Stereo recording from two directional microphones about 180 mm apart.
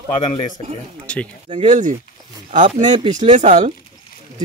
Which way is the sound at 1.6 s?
40° right (ahead or behind).